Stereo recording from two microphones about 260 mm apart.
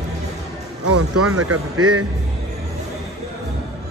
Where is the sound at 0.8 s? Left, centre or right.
Right.